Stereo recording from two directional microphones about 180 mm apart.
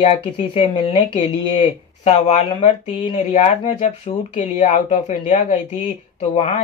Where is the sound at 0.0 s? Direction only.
30° left (ahead or behind).